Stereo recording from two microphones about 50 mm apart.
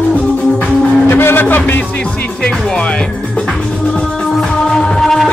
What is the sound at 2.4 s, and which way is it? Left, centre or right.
Music, centre.